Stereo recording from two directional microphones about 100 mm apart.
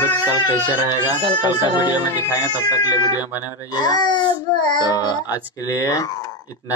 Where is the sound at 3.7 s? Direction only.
45° left (ahead or behind).